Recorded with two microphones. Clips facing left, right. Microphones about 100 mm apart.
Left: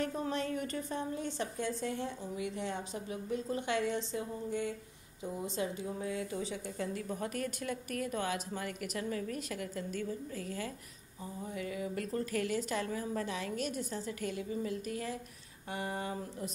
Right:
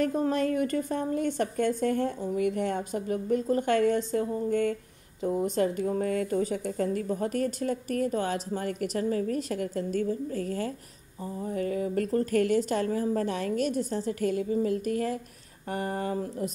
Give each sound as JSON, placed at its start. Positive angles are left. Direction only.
{"t": 0.0, "sound": "a woman's voice", "side_deg": -45}